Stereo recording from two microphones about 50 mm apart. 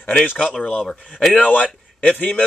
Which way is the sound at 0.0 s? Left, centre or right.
Left.